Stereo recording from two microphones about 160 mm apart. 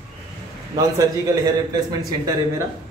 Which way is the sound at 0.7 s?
20° right (ahead or behind).